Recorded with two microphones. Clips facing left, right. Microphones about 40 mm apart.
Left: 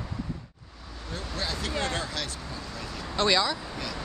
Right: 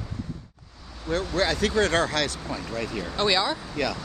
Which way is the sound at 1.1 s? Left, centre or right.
Right.